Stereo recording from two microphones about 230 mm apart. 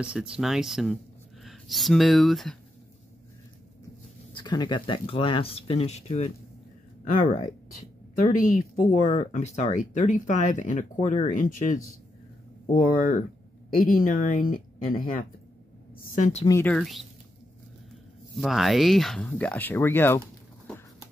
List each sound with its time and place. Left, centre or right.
0.0 s speech: centre
4.3 s speech: centre
8.3 s speech: left
16.4 s speech: centre
18.4 s speech: centre